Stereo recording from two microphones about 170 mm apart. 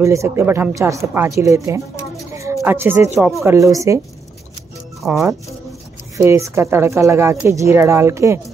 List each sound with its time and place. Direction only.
0.0 s speech: 15° right (ahead or behind)
2.3 s a sound: 15° right (ahead or behind)
3.2 s speech: centre (ahead or behind)
3.4 s speech: 20° right (ahead or behind)
5.0 s speech: 5° right (ahead or behind)
6.1 s speech: 15° right (ahead or behind)